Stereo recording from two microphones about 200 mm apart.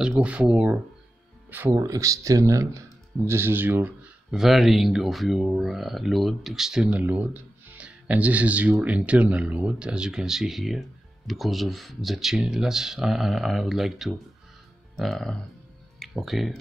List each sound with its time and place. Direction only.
0.0 s speech: 5° right (ahead or behind)